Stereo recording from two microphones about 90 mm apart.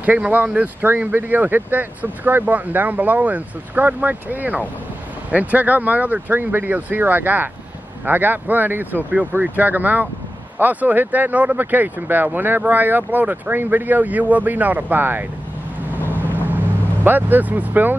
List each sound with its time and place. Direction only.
0.0 s speech: 20° right (ahead or behind)
16.4 s vehicle: 20° right (ahead or behind)